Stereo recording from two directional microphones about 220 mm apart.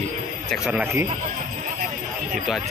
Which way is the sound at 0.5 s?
5° right (ahead or behind).